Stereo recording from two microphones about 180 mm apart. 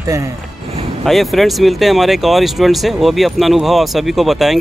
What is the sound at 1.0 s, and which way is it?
Speech, centre (ahead or behind).